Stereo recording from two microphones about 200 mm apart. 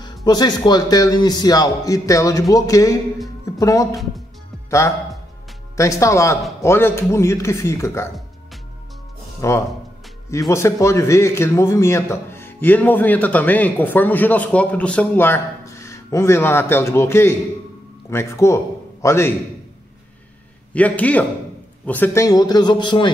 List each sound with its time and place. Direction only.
0.0 s a man's voice: 20° left (ahead or behind)
9.4 s a man's voice: 15° left (ahead or behind)
20.7 s a man's voice: 5° left (ahead or behind); by 23.1 s 25° left (ahead or behind)